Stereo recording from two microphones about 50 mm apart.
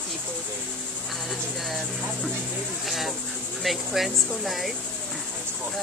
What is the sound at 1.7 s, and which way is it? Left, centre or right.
Speech, centre.